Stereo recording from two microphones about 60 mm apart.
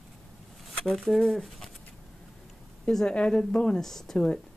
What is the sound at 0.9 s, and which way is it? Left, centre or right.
Speech, centre.